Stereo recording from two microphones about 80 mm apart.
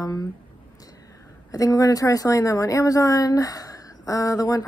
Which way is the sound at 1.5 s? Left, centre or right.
Left.